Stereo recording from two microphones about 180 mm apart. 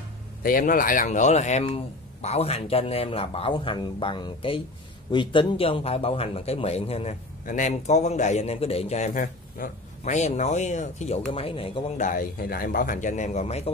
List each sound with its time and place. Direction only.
0.4 s speech: 55° left (ahead or behind)
11.3 s speech: 30° left (ahead or behind)
12.0 s speech: 50° left (ahead or behind)